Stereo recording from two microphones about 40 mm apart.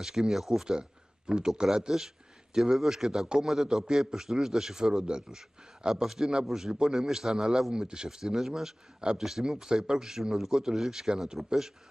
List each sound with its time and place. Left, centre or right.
0.0 s a man's voice: centre
0.7 s a sound: right
1.6 s a man's voice: centre
9.0 s a man's voice: right; by 11.7 s centre